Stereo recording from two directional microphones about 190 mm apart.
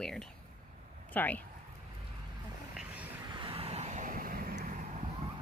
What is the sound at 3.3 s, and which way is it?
Vehicle, 25° right (ahead or behind).